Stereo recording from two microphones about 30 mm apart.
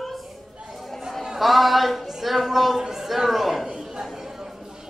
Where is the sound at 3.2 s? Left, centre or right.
Centre.